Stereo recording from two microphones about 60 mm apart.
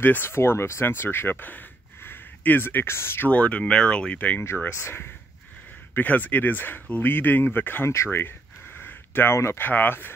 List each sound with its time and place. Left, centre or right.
0.0 s speech: left
3.3 s speech: left
4.6 s speech: left
5.9 s speech: left
7.9 s a sound: left
9.7 s speech: left